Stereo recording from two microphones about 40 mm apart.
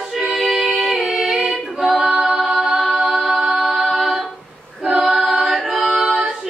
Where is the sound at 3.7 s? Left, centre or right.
Centre.